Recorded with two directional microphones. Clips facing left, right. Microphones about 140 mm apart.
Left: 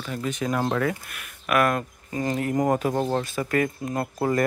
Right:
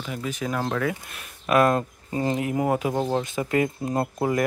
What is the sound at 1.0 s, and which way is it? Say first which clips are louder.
Speech: right 2 dB; 25° right (ahead or behind).